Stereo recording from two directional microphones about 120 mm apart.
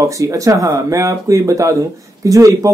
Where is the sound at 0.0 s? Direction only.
25° right (ahead or behind).